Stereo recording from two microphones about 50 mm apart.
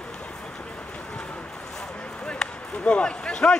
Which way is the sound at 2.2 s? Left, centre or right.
Left.